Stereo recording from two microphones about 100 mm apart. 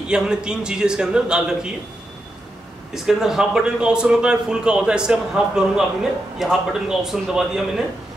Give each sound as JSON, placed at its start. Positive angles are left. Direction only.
{"t": 0.1, "sound": "a man's voice", "side_deg": -10}
{"t": 2.9, "sound": "a man's voice", "side_deg": -5}